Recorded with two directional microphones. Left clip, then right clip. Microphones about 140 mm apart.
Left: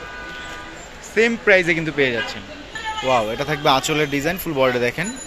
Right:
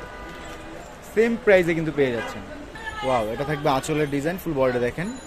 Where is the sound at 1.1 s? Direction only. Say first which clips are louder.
Left 3 dB; centre (ahead or behind).